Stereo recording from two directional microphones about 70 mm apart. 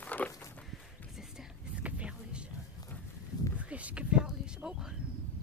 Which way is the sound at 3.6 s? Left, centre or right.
Centre.